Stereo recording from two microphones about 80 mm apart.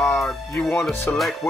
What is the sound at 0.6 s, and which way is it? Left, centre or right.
Speech, left.